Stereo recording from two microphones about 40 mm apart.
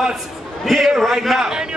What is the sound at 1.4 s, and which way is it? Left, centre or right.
Speech, centre.